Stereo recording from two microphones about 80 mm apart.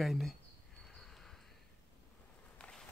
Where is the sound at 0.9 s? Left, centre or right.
Centre.